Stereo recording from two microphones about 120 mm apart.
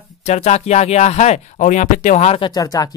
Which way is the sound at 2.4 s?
35° left (ahead or behind).